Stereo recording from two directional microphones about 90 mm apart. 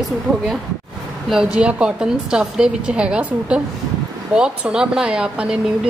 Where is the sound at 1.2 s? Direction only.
10° right (ahead or behind).